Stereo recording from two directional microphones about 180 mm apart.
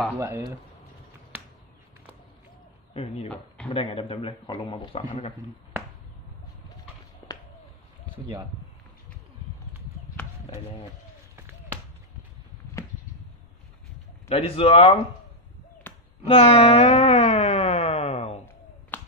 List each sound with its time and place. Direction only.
0.1 s speech: 15° right (ahead or behind)
2.9 s speech: 30° left (ahead or behind)
14.3 s speech: 30° left (ahead or behind)
15.8 s a sound: 10° left (ahead or behind)
16.3 s music: 30° left (ahead or behind)
18.9 s finger snapping: 10° left (ahead or behind)